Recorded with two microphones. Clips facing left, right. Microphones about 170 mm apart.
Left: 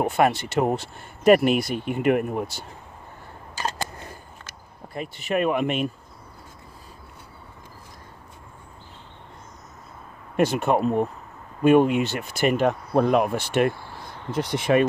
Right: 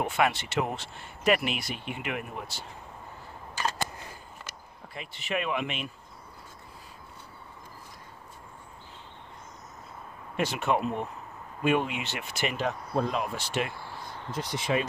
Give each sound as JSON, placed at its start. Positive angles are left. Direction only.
{"t": 0.0, "sound": "speech", "side_deg": 40}
{"t": 4.9, "sound": "speech", "side_deg": 45}
{"t": 10.3, "sound": "speech", "side_deg": 45}